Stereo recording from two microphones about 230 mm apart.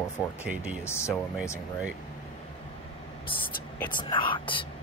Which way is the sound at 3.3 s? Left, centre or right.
Left.